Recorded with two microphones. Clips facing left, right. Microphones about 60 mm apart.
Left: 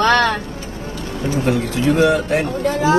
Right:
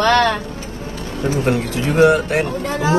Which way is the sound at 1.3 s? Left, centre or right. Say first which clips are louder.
Left 1 dB; right.